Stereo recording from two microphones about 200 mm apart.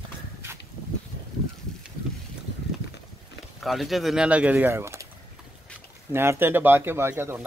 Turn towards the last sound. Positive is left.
turn(degrees=-10)  # may be behind; listen again after turning